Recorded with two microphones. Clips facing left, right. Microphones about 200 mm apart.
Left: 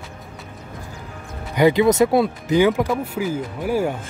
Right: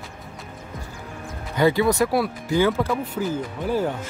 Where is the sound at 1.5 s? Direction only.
15° left (ahead or behind).